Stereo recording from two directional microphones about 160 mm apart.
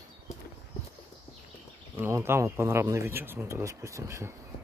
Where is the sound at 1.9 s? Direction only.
15° right (ahead or behind).